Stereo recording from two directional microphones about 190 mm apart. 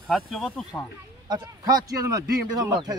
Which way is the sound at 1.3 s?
20° right (ahead or behind).